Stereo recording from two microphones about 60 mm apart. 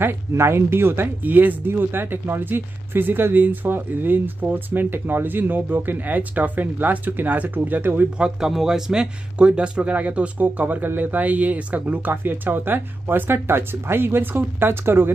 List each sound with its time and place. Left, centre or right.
0.3 s speech: right
8.2 s speech: centre; by 15.0 s right